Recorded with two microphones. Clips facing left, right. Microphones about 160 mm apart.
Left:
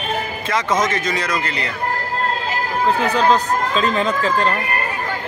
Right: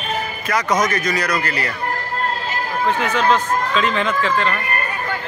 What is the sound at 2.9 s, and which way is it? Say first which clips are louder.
Speech: left 2 dB; 35° left (ahead or behind).